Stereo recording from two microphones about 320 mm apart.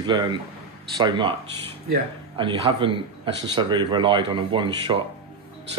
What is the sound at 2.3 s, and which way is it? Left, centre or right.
Speech, centre.